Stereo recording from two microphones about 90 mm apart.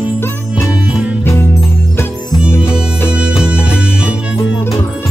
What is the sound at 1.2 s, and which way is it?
Music, 30° left (ahead or behind).